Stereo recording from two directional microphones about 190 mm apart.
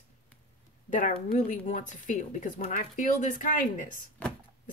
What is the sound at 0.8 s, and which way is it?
Speech, 40° left (ahead or behind).